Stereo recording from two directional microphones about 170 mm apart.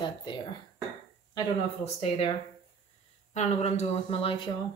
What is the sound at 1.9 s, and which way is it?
Speech, 30° left (ahead or behind).